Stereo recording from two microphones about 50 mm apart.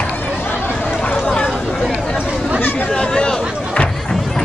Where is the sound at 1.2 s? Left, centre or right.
Centre.